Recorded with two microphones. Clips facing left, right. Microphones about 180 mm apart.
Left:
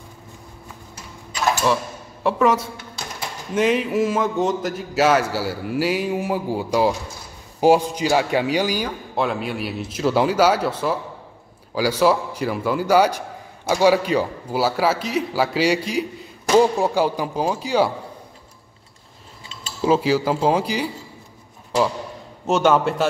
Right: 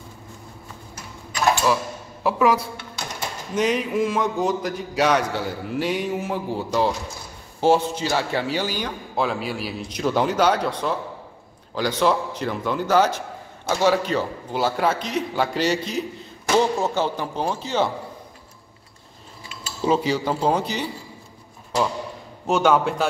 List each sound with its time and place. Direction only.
2.2 s a man's voice: 5° right (ahead or behind)
9.1 s a man's voice: centre (ahead or behind)
19.8 s a man's voice: 5° left (ahead or behind)
22.5 s a man's voice: centre (ahead or behind)